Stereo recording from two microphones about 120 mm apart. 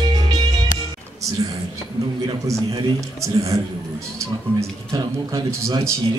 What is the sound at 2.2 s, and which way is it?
A man's voice, 30° right (ahead or behind).